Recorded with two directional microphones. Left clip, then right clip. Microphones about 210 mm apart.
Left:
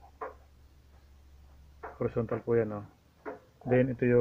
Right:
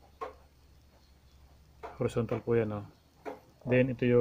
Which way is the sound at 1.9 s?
15° right (ahead or behind).